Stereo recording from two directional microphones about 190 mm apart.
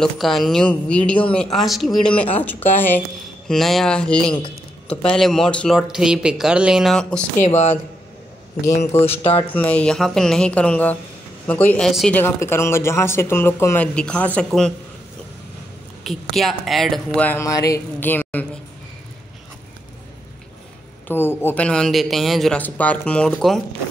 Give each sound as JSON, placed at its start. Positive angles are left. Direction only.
{"t": 0.0, "sound": "a man's voice", "side_deg": 0}
{"t": 7.4, "sound": "speech", "side_deg": 35}
{"t": 8.6, "sound": "speech", "side_deg": 15}
{"t": 9.2, "sound": "speech", "side_deg": 30}
{"t": 9.5, "sound": "speech", "side_deg": 10}
{"t": 12.2, "sound": "speech", "side_deg": 15}
{"t": 16.0, "sound": "speech", "side_deg": 0}
{"t": 21.1, "sound": "a man's voice", "side_deg": 10}